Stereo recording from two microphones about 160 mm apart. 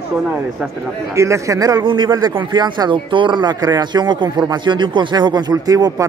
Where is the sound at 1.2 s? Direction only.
20° right (ahead or behind).